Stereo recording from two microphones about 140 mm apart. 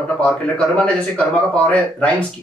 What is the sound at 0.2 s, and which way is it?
Speech, 10° left (ahead or behind).